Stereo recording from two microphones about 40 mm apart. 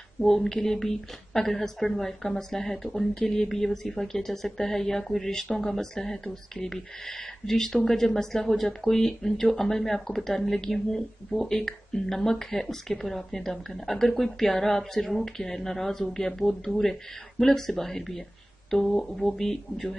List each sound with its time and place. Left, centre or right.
0.2 s a woman's voice: centre